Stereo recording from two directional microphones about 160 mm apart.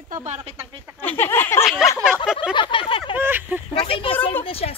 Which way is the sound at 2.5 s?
30° left (ahead or behind).